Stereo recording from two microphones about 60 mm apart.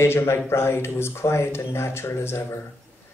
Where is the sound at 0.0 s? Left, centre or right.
Left.